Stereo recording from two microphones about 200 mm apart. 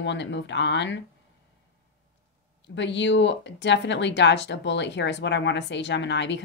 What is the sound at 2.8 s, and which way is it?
Speech, 60° left (ahead or behind).